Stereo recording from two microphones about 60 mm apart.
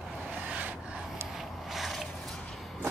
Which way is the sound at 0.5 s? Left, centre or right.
Right.